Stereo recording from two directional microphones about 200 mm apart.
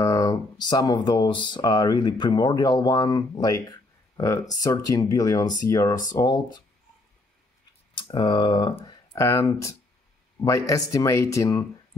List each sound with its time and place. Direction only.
0.0 s speech: 15° left (ahead or behind)
7.9 s speech: 25° left (ahead or behind)